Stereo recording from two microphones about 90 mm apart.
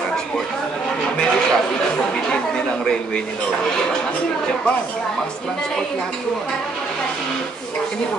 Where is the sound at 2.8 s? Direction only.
10° left (ahead or behind).